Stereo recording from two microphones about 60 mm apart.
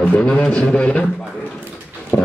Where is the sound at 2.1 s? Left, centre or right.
Left.